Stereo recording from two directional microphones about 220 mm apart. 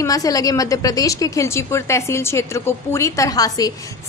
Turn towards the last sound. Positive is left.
turn(degrees=15)  # may be behind; listen again after turning